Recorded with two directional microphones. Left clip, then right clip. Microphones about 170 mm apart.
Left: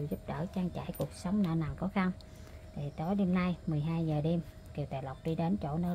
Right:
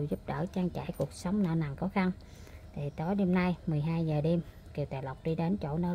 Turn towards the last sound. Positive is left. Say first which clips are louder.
# right 1 dB
turn(degrees=-20)  # may be behind; listen again after turning